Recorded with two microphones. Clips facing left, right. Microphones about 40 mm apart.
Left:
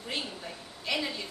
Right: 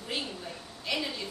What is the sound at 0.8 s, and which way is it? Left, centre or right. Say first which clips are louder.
Speech: left 1 dB; centre.